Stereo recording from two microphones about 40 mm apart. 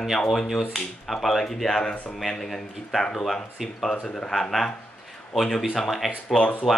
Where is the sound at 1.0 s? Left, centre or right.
Centre.